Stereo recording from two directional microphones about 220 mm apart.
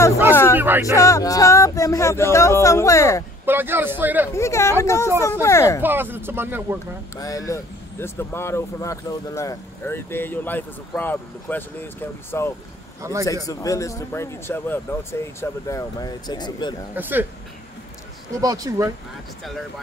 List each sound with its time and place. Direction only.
0.6 s speech: 10° right (ahead or behind)
0.9 s speech: 15° left (ahead or behind)
3.4 s speech: 10° right (ahead or behind)
4.3 s speech: 10° left (ahead or behind)
5.8 s speech: 10° right (ahead or behind)
7.2 s speech: 15° left (ahead or behind)
16.9 s speech: 10° right (ahead or behind)
18.4 s speech: 15° right (ahead or behind)